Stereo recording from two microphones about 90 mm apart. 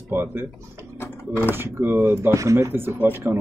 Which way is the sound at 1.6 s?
25° right (ahead or behind).